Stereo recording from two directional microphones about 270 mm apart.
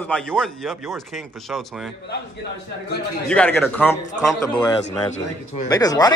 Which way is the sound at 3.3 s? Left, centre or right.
Centre.